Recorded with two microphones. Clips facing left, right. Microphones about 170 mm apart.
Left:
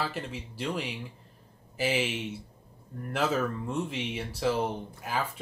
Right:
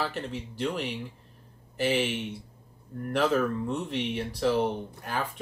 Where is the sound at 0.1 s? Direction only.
10° left (ahead or behind).